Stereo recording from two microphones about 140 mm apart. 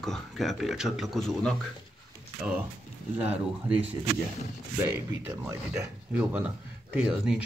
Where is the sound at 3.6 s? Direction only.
10° right (ahead or behind).